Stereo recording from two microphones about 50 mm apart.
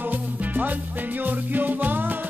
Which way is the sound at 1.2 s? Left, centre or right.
Right.